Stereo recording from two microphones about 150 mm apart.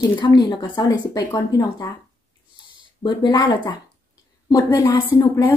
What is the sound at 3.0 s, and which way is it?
A woman's voice, 25° left (ahead or behind).